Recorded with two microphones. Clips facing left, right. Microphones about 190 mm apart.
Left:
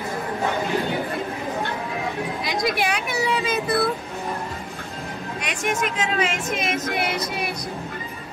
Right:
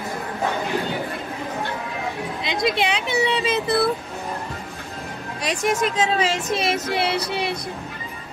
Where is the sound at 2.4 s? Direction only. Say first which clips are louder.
Right 3 dB; 25° right (ahead or behind).